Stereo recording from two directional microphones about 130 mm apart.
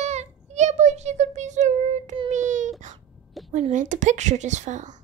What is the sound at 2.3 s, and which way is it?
Baby cry, 70° right (ahead or behind).